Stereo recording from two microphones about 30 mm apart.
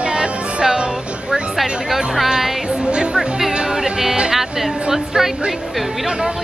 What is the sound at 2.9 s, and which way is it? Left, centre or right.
Speech, right.